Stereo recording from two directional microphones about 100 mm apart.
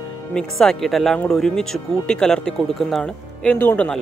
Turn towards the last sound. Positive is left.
turn(degrees=20)  # may be behind; listen again after turning